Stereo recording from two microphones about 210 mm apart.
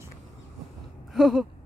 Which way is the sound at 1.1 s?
Centre (ahead or behind).